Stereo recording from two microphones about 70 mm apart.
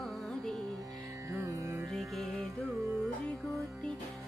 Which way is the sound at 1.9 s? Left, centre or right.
Centre.